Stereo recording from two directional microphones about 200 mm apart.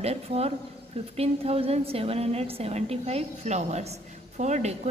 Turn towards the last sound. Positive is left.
turn(degrees=-35)  # may be behind; listen again after turning